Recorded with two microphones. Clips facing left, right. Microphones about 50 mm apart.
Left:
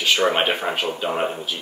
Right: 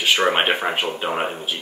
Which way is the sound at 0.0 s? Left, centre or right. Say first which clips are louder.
Right 1 dB; right.